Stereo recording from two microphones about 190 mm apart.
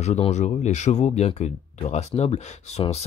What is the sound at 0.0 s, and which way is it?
Speech, 35° left (ahead or behind).